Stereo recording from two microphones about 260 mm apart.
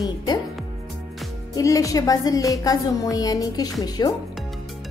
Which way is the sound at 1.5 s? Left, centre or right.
Centre.